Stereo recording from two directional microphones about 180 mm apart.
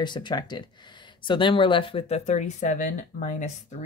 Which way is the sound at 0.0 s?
25° left (ahead or behind).